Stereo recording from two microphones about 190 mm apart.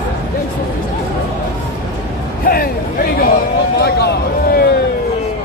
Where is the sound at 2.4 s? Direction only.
50° left (ahead or behind).